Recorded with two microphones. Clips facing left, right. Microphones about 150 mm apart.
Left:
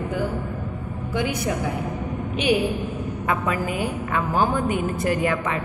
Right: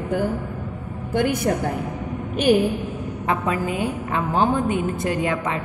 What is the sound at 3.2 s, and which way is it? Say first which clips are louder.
A woman's voice: right 2 dB; 25° right (ahead or behind).